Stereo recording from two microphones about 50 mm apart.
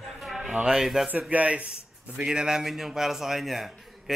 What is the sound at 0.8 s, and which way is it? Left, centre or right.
Speech, centre.